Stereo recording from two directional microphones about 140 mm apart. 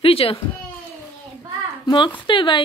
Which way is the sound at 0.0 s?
45° left (ahead or behind).